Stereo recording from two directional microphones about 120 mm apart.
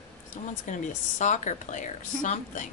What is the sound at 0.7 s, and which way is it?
Speech, 85° left.